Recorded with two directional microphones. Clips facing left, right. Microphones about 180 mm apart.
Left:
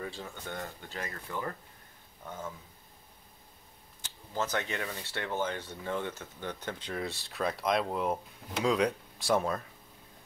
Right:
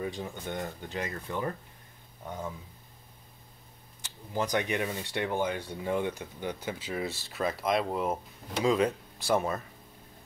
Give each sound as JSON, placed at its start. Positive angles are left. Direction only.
{"t": 0.0, "sound": "speech", "side_deg": -15}
{"t": 4.3, "sound": "speech", "side_deg": -15}